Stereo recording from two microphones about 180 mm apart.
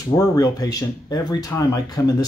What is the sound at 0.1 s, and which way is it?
Speech, 20° left (ahead or behind).